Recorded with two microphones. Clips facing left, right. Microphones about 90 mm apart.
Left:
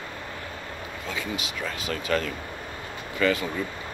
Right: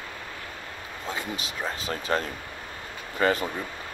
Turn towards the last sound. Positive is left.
turn(degrees=-40)  # may be behind; listen again after turning